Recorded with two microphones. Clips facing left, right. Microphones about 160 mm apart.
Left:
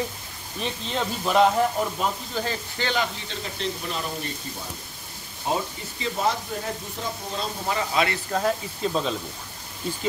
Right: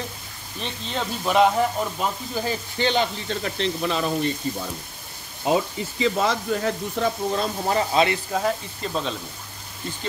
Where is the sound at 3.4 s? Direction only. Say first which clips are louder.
Right 5 dB; 85° right.